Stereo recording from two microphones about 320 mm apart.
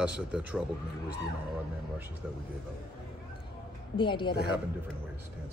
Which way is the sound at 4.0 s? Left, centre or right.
Centre.